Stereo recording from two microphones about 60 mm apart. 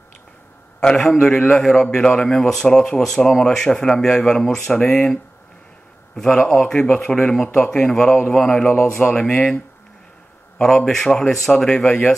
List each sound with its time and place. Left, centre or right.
0.7 s a man's voice: centre
4.7 s speech: centre
6.3 s speech: centre
8.6 s a man's voice: left
9.0 s speech: centre
10.6 s speech: centre